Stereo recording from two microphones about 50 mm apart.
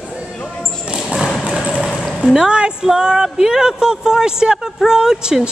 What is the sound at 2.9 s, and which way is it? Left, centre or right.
Speech, centre.